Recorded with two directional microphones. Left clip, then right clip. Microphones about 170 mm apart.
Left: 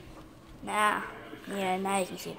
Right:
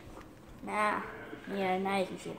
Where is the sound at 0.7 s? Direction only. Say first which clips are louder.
Left 4 dB; 25° left (ahead or behind).